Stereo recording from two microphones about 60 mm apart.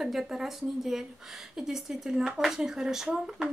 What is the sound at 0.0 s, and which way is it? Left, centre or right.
Speech, centre.